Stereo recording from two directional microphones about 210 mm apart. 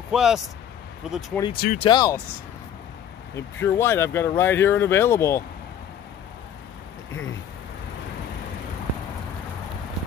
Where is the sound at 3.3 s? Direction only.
10° left (ahead or behind).